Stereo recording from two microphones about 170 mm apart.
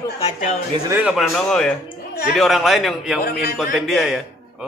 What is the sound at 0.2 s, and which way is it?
Speech, 45° left (ahead or behind).